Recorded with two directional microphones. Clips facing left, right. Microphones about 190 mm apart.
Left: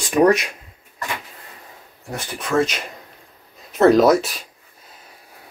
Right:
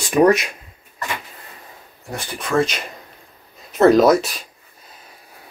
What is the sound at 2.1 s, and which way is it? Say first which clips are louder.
Speech: even; 5° left (ahead or behind).